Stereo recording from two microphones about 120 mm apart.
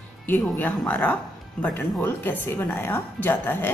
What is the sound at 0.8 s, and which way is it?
Speech, 10° left (ahead or behind).